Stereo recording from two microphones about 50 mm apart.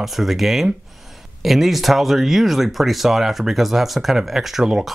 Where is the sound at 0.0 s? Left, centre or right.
Centre.